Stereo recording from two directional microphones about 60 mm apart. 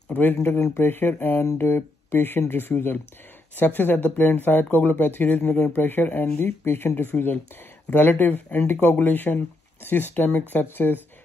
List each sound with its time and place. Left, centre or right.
0.1 s speech: left